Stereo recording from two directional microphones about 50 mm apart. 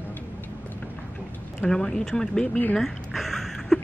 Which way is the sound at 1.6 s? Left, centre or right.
Centre.